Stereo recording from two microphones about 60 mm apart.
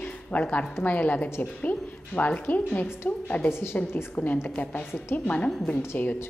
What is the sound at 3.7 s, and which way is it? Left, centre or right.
A woman's voice, left.